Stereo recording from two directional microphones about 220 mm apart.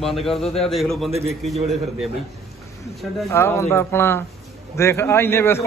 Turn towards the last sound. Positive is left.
turn(degrees=10)  # may be behind; listen again after turning